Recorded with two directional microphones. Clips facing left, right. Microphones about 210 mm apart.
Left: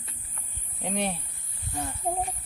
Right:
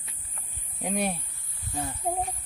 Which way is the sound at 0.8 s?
10° right (ahead or behind).